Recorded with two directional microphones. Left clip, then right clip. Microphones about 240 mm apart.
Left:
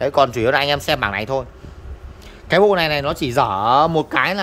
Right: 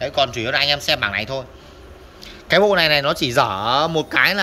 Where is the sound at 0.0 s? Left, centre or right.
Left.